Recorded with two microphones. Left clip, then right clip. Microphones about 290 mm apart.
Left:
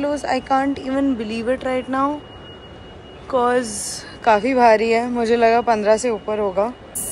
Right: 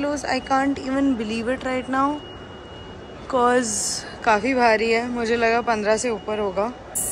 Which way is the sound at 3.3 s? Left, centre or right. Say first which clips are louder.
Left 1 dB; centre.